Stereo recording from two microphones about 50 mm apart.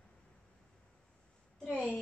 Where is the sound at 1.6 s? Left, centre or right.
Centre.